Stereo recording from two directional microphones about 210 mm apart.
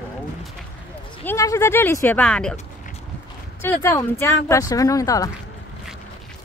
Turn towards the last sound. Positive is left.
turn(degrees=15)  # may be behind; listen again after turning